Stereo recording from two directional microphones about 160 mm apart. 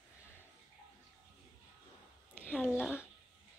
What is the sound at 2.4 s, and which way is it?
Speech, 10° left (ahead or behind).